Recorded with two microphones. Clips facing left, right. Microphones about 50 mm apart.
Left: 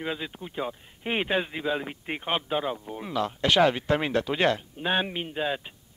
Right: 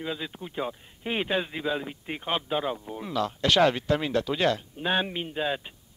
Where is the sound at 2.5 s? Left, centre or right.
Centre.